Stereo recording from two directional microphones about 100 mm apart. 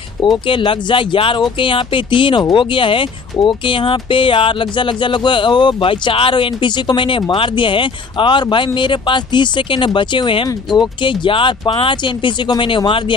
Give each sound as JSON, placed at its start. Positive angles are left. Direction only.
{"t": 0.2, "sound": "speech", "side_deg": 55}